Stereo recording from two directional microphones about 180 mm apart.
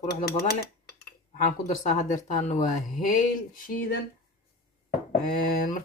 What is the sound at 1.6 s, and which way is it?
Speech, 40° left (ahead or behind).